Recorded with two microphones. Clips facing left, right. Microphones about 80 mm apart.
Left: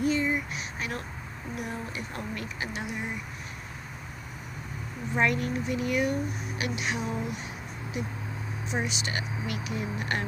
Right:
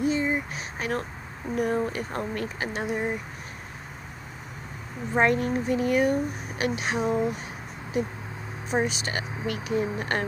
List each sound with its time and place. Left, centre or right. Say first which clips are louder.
0.0 s a sound: right 2 dB; right
1.6 s speech: right 11 dB; right
5.1 s speech: right 4 dB; right